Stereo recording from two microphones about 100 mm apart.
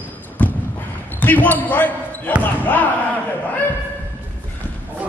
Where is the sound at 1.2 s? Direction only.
15° left (ahead or behind).